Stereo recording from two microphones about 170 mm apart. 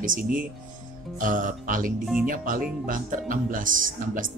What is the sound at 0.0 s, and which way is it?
Speech, 55° right (ahead or behind).